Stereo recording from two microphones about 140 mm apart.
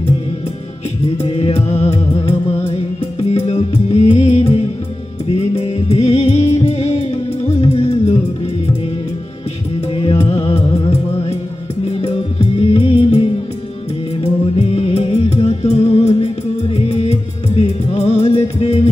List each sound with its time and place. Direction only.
1.1 s music: 45° left (ahead or behind)
3.3 s music: 45° left (ahead or behind)
9.9 s music: 40° left (ahead or behind)
14.6 s music: 45° left (ahead or behind)